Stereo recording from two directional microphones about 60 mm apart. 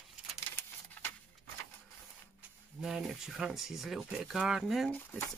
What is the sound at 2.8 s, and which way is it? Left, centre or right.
Speech, centre.